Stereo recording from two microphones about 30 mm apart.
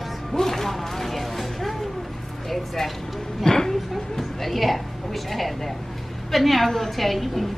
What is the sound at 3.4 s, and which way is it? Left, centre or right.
Speech, centre.